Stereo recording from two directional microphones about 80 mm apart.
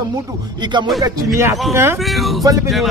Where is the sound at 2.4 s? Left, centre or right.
Right.